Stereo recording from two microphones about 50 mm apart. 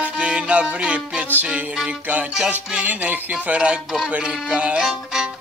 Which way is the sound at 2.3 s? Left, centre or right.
Centre.